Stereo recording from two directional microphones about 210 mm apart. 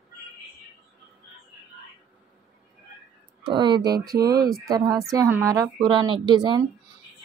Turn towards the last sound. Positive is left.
turn(degrees=-20)  # may be behind; listen again after turning